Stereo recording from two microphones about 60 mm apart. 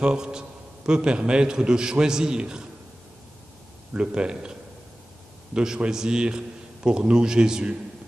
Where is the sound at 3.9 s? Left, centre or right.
Centre.